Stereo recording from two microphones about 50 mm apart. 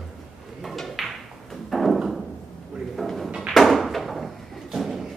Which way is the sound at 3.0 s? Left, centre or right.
Centre.